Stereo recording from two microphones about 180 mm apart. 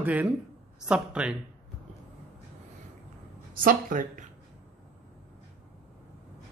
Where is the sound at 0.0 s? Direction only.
10° right (ahead or behind).